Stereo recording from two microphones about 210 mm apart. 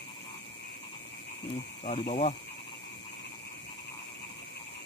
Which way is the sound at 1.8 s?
35° left (ahead or behind).